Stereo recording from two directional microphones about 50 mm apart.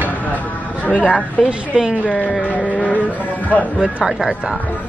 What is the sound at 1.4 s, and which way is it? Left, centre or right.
Speech, centre.